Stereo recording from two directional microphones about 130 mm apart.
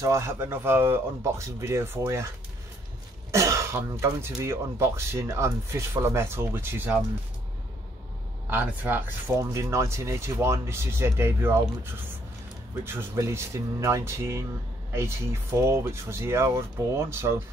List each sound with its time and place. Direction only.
0.0 s speech: 20° right (ahead or behind)
8.5 s speech: 15° right (ahead or behind)